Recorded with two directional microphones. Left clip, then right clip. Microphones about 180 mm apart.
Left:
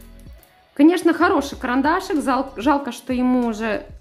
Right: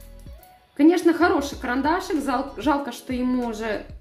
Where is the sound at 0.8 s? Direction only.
25° left (ahead or behind).